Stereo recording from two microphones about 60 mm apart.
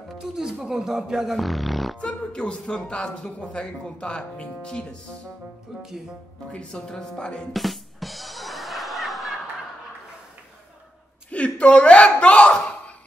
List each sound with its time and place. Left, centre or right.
0.2 s speech: centre
2.0 s speech: centre
6.5 s speech: centre
7.5 s music: centre
11.2 s a sound: left